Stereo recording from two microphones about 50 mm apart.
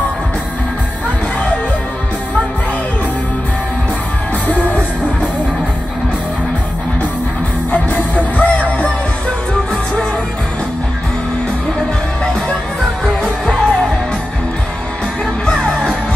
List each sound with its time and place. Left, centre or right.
8.4 s music: left
13.2 s music: left
15.4 s music: centre